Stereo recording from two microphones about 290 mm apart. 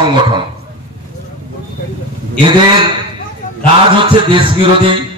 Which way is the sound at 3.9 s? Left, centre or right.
Centre.